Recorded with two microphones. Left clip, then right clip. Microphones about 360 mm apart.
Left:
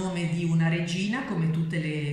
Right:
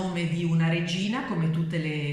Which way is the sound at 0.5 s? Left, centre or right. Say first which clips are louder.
Right 1 dB; centre.